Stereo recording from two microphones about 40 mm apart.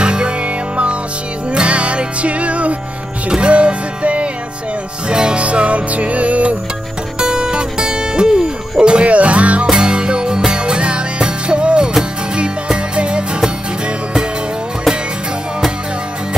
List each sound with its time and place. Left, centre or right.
0.0 s music: right
7.2 s music: centre
9.0 s music: right
9.7 s music: centre